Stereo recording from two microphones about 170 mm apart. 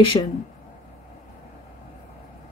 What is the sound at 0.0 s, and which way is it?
Speech, 30° left (ahead or behind).